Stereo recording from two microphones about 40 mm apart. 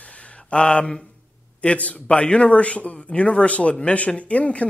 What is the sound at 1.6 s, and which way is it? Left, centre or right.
A man's voice, left.